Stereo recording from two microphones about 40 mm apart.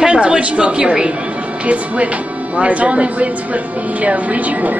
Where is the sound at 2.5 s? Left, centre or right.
Right.